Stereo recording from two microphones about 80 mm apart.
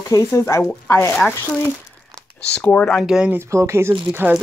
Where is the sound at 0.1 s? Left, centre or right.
Left.